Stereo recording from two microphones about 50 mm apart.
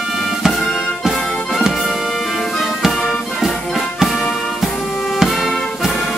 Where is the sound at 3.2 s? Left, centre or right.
Centre.